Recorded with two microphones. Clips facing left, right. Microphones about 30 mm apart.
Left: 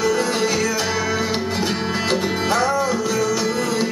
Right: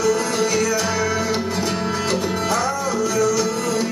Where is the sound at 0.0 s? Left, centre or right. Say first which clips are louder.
Even; left.